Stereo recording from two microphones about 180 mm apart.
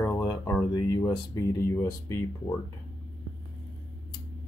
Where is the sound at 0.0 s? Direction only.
10° left (ahead or behind).